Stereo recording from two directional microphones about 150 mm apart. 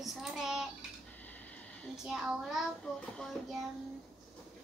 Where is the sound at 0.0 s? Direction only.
Centre (ahead or behind).